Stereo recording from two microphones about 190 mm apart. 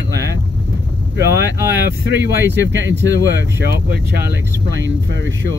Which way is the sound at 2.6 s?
70° right (ahead or behind).